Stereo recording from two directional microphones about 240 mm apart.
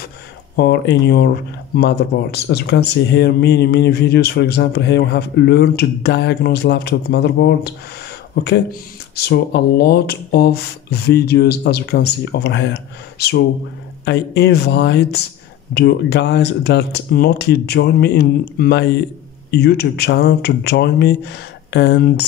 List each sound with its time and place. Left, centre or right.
0.6 s speech: left
9.1 s speech: left
14.0 s speech: left